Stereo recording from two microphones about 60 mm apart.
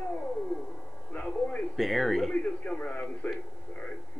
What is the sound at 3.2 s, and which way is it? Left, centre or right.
Speech, left.